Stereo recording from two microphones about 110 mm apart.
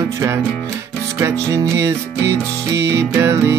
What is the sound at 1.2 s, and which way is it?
Music, 25° right (ahead or behind).